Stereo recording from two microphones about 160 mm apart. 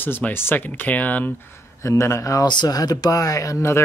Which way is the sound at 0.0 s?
10° left (ahead or behind).